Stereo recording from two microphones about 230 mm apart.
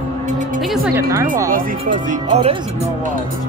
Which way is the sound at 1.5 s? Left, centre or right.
Right.